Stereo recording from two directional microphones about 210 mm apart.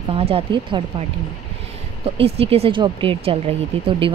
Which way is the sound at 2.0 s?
30° right (ahead or behind).